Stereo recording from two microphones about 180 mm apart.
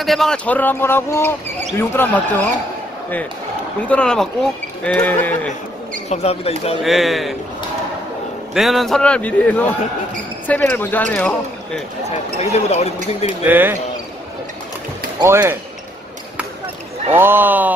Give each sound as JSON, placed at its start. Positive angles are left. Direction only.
{"t": 0.0, "sound": "speech", "side_deg": 0}
{"t": 3.9, "sound": "speech", "side_deg": 5}
{"t": 6.0, "sound": "speech", "side_deg": 35}
{"t": 6.8, "sound": "a man's voice", "side_deg": 0}
{"t": 8.5, "sound": "a man's voice", "side_deg": 0}
{"t": 12.4, "sound": "speech", "side_deg": 35}
{"t": 13.4, "sound": "speech", "side_deg": -10}
{"t": 15.1, "sound": "speech", "side_deg": -15}
{"t": 17.2, "sound": "speech", "side_deg": -10}